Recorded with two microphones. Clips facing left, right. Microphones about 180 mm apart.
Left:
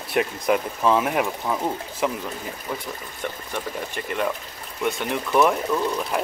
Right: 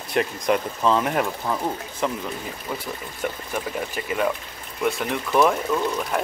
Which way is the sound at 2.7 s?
5° right (ahead or behind).